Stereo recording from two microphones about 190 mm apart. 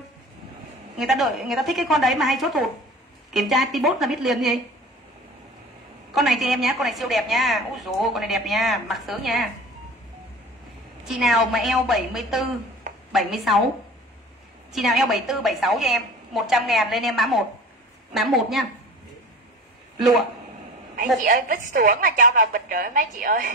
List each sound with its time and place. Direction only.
0.9 s a woman's voice: centre (ahead or behind)
6.1 s a woman's voice: centre (ahead or behind)
11.1 s a woman's voice: centre (ahead or behind)
14.7 s a woman's voice: centre (ahead or behind)
20.0 s a woman's voice: centre (ahead or behind)
21.2 s a woman's voice: 45° right (ahead or behind)